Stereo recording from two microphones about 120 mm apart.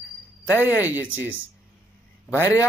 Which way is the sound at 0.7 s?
15° right (ahead or behind).